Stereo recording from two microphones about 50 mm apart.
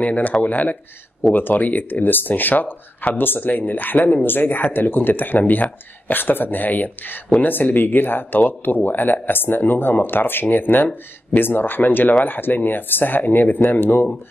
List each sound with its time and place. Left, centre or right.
0.0 s speech: left